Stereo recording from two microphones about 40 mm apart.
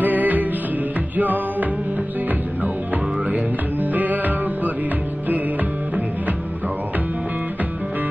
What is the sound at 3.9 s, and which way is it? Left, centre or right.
Music, right.